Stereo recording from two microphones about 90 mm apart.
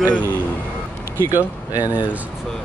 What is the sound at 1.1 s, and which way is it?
Speech, 25° right (ahead or behind).